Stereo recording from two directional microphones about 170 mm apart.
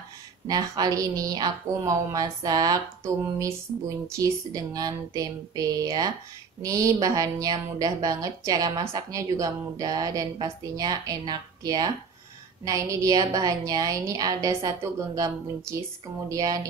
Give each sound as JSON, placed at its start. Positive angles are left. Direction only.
{"t": 0.5, "sound": "a woman's voice", "side_deg": -20}